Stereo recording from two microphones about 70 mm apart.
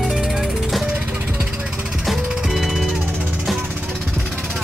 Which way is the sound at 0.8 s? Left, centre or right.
Centre.